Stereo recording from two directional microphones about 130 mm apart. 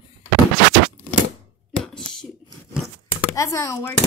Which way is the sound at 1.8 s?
5° left (ahead or behind).